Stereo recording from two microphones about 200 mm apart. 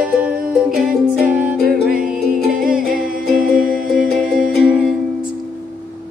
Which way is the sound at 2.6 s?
5° right (ahead or behind).